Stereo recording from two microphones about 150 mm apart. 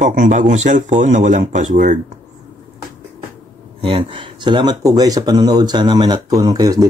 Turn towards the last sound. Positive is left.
turn(degrees=-25)  # may be behind; listen again after turning